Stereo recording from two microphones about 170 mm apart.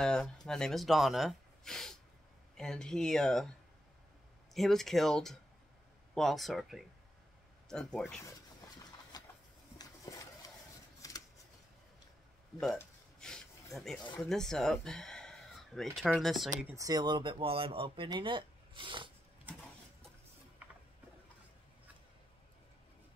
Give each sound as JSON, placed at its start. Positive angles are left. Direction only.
{"t": 0.0, "sound": "speech", "side_deg": 5}
{"t": 4.6, "sound": "speech", "side_deg": 0}
{"t": 9.1, "sound": "a sound", "side_deg": 25}
{"t": 11.0, "sound": "shuffling cards", "side_deg": 20}
{"t": 13.2, "sound": "a sound", "side_deg": 5}
{"t": 13.7, "sound": "speech", "side_deg": 0}
{"t": 16.7, "sound": "speech", "side_deg": -20}